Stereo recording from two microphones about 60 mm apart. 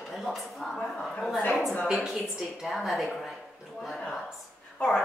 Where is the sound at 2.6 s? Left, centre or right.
Centre.